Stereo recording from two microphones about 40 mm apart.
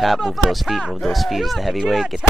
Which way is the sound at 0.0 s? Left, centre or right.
Centre.